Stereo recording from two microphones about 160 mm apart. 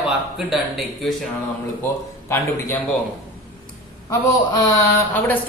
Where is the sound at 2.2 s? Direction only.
15° left (ahead or behind).